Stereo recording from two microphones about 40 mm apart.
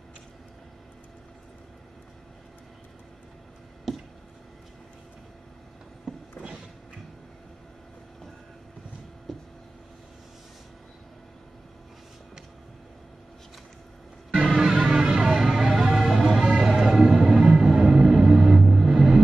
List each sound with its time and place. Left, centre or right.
3.9 s a sound: centre
14.5 s music: centre
15.3 s vehicle: centre
16.2 s music: centre